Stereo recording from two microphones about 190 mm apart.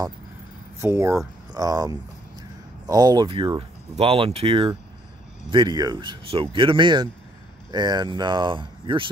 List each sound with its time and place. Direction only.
0.7 s speech: 15° right (ahead or behind)